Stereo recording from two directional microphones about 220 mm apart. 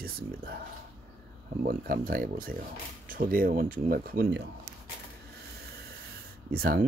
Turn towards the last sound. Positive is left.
turn(degrees=-45)  # may be behind; listen again after turning